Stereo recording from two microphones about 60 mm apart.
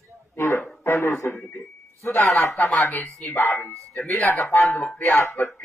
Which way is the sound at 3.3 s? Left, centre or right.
Left.